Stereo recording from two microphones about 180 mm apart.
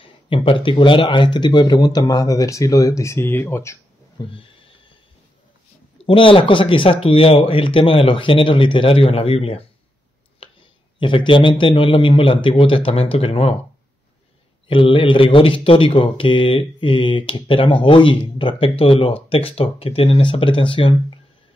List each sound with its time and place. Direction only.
0.3 s speech: 30° left (ahead or behind); by 3.7 s 15° left (ahead or behind)
4.3 s a sound: 30° left (ahead or behind)
6.0 s speech: 30° left (ahead or behind)
10.4 s a sound: 30° left (ahead or behind)
11.0 s speech: 30° left (ahead or behind)
14.7 s speech: 30° left (ahead or behind)